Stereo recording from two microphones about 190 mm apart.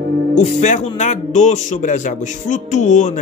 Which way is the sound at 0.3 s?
40° left (ahead or behind).